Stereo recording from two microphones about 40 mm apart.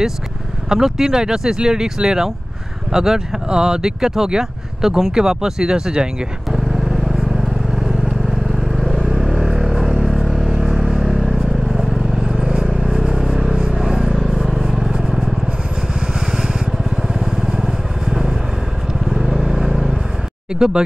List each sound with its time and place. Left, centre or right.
0.7 s speech: centre
6.5 s vehicle: centre
20.5 s speech: centre